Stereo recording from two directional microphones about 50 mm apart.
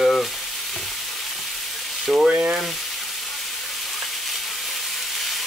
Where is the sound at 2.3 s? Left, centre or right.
Right.